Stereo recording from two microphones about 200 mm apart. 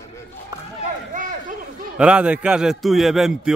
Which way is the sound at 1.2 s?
40° right (ahead or behind).